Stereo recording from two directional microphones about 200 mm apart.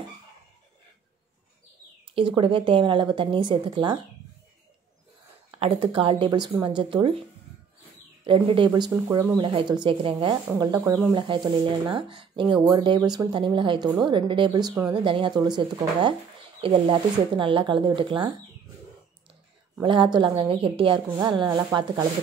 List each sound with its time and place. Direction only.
2.1 s speech: 25° right (ahead or behind)
5.5 s speech: 25° right (ahead or behind)
8.3 s speech: 25° right (ahead or behind)
19.8 s speech: 25° right (ahead or behind)